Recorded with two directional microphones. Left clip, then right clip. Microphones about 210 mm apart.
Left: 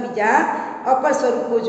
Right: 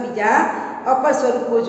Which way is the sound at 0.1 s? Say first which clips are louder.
Even; 5° left (ahead or behind).